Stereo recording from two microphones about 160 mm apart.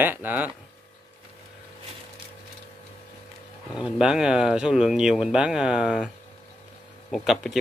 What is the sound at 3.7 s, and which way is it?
Speech, 5° right (ahead or behind).